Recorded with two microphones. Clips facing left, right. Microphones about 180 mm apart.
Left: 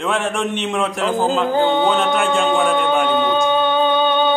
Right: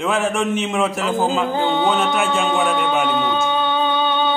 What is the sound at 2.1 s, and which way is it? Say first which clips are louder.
Speech: left 2 dB; centre (ahead or behind).